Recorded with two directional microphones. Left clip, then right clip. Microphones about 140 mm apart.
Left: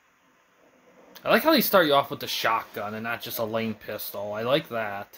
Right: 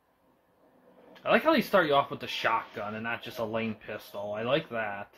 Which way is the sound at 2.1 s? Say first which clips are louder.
Left 3 dB; 90° left.